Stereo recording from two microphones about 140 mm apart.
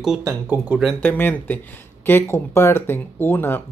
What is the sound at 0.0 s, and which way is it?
Speech, 5° right (ahead or behind).